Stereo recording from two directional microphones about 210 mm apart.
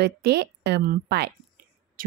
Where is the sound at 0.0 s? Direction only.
50° right (ahead or behind).